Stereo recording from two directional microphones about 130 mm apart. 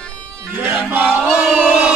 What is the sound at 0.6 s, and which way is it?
Crowd, 10° right (ahead or behind).